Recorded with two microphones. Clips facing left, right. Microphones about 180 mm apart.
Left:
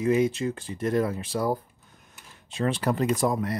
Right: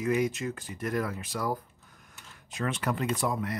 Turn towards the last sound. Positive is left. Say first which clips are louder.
# left 5 dB
turn(degrees=40)  # may be behind; listen again after turning